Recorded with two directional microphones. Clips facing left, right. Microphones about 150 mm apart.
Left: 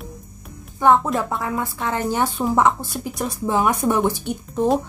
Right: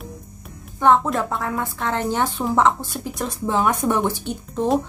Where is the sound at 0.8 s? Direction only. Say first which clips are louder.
Even; 5° left (ahead or behind).